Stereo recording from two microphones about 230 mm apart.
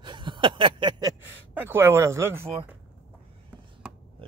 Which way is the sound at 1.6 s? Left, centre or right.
Centre.